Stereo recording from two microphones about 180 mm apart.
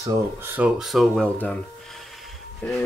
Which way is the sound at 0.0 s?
20° right (ahead or behind).